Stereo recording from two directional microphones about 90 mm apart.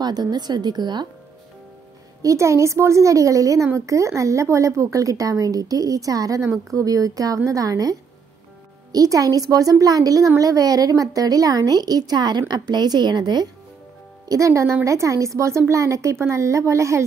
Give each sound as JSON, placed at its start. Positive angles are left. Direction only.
{"t": 0.0, "sound": "speech", "side_deg": -50}
{"t": 2.2, "sound": "a woman's voice", "side_deg": -35}
{"t": 14.3, "sound": "a woman's voice", "side_deg": -35}